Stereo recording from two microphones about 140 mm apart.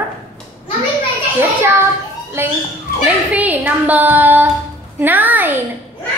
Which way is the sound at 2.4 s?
15° right (ahead or behind).